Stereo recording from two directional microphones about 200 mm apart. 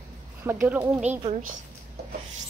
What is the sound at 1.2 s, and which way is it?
Speech, 35° right (ahead or behind).